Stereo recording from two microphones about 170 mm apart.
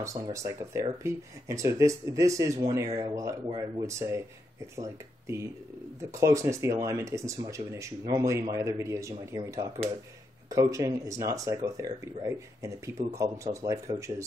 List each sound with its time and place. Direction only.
0.0 s speech: 20° right (ahead or behind)
3.4 s speech: 30° right (ahead or behind)
3.8 s speech: 15° right (ahead or behind)